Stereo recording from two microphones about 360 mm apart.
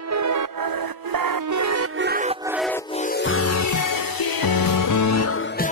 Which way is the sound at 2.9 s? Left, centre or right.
Left.